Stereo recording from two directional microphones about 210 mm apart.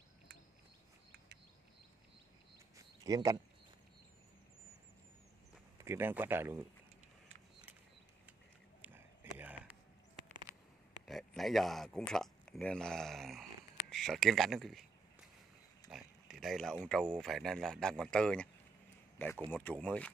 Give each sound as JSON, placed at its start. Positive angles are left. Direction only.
{"t": 3.0, "sound": "speech", "side_deg": -15}
{"t": 5.8, "sound": "speech", "side_deg": -10}
{"t": 8.8, "sound": "a sound", "side_deg": -10}
{"t": 11.1, "sound": "speech", "side_deg": 0}
{"t": 15.9, "sound": "speech", "side_deg": 0}
{"t": 19.5, "sound": "speech", "side_deg": 5}